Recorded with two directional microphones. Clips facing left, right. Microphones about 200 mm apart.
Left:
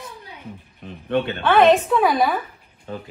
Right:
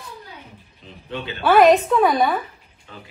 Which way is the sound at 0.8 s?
60° left (ahead or behind).